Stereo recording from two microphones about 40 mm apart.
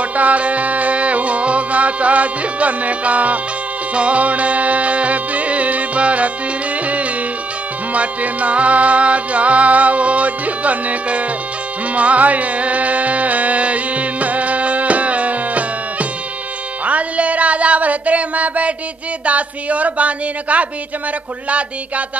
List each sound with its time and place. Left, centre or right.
0.0 s music: right
7.9 s music: right